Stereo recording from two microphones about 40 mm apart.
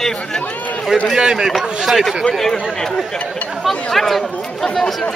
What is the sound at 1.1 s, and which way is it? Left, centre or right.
Speech, centre.